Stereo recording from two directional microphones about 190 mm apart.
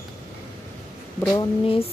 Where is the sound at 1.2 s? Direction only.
15° left (ahead or behind).